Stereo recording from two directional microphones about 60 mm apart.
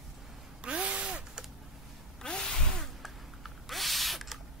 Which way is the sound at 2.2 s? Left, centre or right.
Centre.